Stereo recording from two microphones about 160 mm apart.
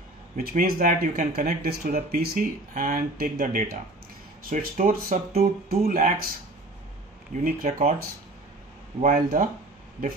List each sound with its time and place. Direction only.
0.4 s speech: 65° right (ahead or behind)
7.4 s speech: 60° right (ahead or behind)
9.0 s speech: 55° right (ahead or behind)